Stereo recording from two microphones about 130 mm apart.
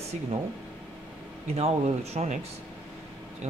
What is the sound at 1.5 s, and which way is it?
Speech, 50° right (ahead or behind).